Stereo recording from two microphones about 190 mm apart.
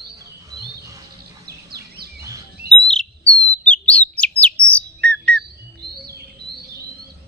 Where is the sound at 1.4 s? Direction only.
55° right (ahead or behind).